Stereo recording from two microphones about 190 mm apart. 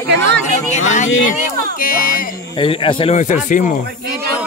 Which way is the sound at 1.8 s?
50° left (ahead or behind).